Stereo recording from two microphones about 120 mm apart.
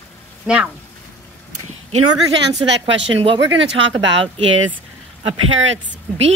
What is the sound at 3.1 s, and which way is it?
Speech, 50° right (ahead or behind).